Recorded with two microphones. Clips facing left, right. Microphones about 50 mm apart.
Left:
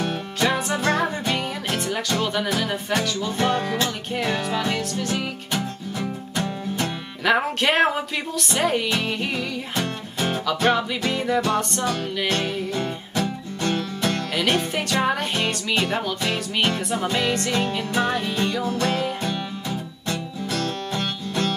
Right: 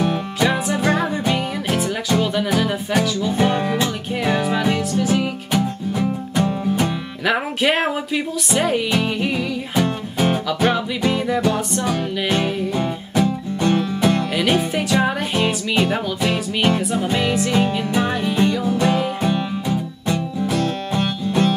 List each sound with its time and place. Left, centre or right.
0.0 s music: centre
3.3 s music: centre
5.5 s music: centre
7.2 s music: centre
11.1 s music: centre
14.3 s music: centre
15.3 s music: centre